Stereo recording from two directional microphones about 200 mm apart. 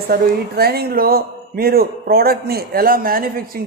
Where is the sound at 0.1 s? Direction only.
50° right (ahead or behind).